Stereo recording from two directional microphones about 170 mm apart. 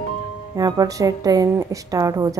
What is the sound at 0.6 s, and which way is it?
Speech, 20° right (ahead or behind).